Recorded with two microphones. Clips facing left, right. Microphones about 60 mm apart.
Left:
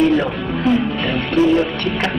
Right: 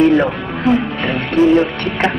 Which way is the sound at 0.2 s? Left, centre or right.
Right.